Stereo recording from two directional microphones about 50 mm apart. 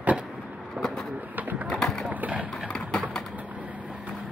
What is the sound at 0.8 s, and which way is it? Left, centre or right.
Vehicle, right.